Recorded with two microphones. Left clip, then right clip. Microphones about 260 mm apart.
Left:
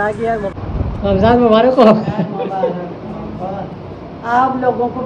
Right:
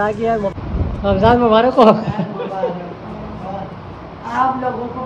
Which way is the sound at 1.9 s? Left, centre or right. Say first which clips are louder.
Left 3 dB; centre.